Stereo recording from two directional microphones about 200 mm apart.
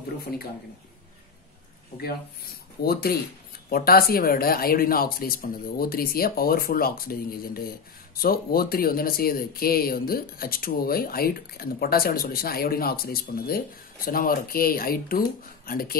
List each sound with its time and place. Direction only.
2.8 s speech: 50° left (ahead or behind)